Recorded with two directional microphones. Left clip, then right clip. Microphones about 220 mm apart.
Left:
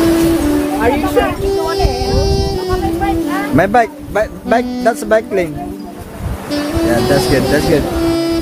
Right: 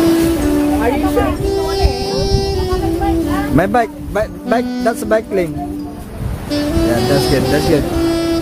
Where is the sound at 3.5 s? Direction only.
10° right (ahead or behind).